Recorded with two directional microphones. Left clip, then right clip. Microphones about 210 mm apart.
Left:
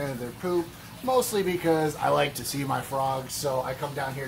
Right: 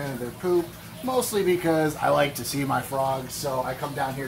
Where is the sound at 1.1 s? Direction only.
20° left (ahead or behind).